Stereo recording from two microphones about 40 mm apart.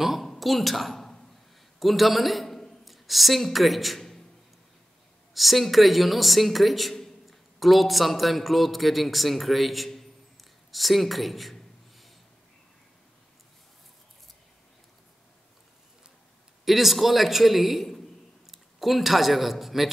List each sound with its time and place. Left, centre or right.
0.0 s a sound: centre
0.4 s a woman's voice: centre
5.3 s a woman's voice: centre
16.6 s a woman's voice: centre